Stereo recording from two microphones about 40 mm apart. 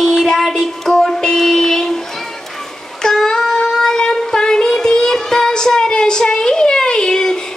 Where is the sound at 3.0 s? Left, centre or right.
Centre.